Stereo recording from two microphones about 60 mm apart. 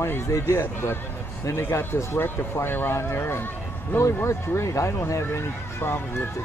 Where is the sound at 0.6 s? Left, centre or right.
Left.